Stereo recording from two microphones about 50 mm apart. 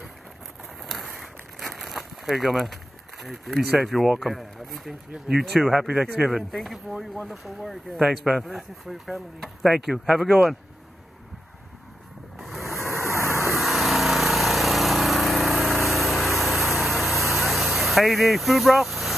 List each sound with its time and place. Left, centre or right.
0.8 s a sound: centre
3.7 s speech: centre
6.5 s speech: centre
12.4 s a sound: centre
13.3 s vehicle: right
13.6 s lawn mower: centre